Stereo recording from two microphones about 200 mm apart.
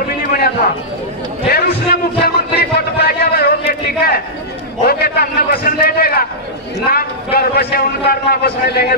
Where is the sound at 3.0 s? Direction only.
50° left (ahead or behind).